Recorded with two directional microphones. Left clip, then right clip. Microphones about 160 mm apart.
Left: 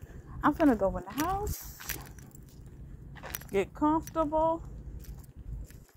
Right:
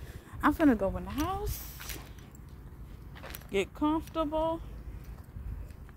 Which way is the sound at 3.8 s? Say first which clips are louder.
Left 2 dB; 20° right (ahead or behind).